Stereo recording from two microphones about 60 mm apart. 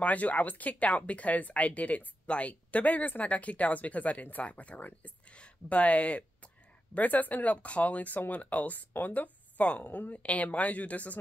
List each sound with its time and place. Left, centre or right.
0.0 s speech: left